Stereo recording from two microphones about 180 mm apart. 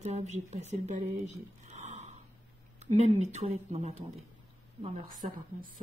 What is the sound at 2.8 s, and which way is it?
Speech, 40° right (ahead or behind).